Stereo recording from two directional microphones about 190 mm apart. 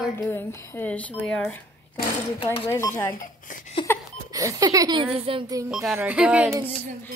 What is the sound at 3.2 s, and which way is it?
Speech, 45° left (ahead or behind).